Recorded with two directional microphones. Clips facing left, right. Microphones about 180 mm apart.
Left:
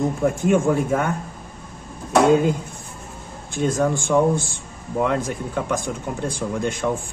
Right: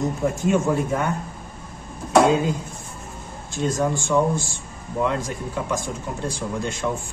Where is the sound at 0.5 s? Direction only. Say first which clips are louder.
Left 2 dB; 55° left (ahead or behind).